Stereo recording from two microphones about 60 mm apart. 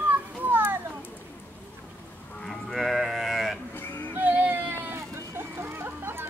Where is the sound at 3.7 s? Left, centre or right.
Left.